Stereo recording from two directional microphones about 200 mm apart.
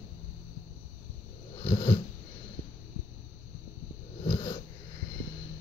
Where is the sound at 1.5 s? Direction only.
25° left (ahead or behind).